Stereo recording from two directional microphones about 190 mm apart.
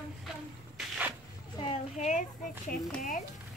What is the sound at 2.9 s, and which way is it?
Speech, 45° left (ahead or behind).